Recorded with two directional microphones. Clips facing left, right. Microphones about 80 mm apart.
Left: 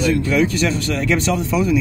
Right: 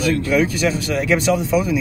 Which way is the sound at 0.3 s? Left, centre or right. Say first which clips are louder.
Even; centre.